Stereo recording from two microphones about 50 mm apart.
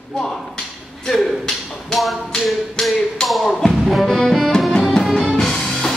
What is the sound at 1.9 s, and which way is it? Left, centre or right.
Tap, centre.